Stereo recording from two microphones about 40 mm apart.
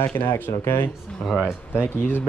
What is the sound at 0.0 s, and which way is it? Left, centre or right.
Speech, left.